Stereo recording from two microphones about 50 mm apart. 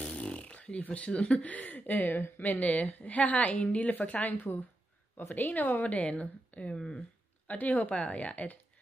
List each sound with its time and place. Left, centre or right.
0.0 s a woman's voice: left